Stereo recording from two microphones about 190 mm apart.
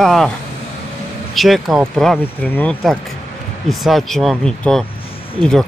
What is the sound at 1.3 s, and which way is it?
Speech, centre (ahead or behind).